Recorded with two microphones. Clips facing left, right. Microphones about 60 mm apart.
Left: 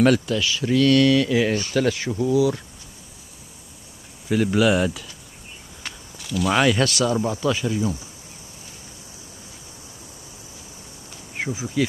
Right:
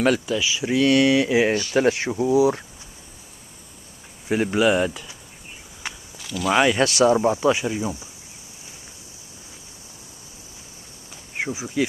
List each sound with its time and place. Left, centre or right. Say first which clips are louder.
0.0 s speech: left 2 dB; centre; by 2.6 s right
4.5 s speech: even; centre
6.1 s speech: even; centre
6.6 s speech: right 4 dB; centre
11.3 s speech: even; centre